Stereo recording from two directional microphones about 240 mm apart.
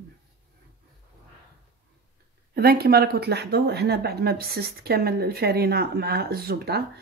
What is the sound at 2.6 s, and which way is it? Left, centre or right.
Speech, right.